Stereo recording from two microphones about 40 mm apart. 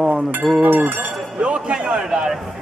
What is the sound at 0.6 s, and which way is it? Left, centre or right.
Speech, right.